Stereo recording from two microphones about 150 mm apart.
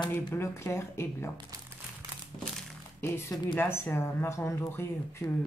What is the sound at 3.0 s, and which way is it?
Speech, 15° left (ahead or behind).